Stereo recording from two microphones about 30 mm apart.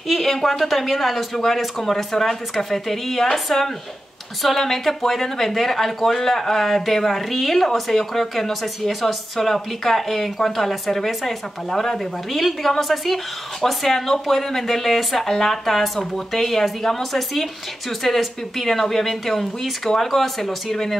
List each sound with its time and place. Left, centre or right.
0.1 s speech: centre